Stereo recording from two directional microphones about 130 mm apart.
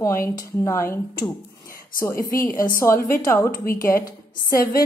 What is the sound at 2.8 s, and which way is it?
Speech, 20° left (ahead or behind).